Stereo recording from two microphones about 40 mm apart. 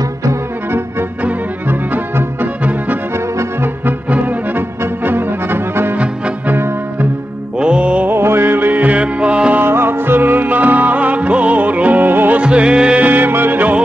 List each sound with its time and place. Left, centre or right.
2.4 s music: right
4.1 s music: right
4.6 s brass instrument: right
7.5 s music: right
8.1 s music: right
8.8 s music: right
9.6 s music: right
12.1 s music: right
12.4 s music: right
13.0 s music: right